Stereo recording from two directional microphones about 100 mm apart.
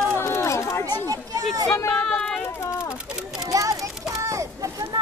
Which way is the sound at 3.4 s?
35° right (ahead or behind).